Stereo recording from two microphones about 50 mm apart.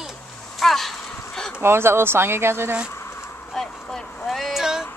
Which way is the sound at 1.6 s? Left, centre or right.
Right.